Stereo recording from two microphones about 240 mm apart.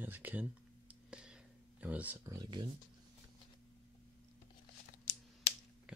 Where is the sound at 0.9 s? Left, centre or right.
Centre.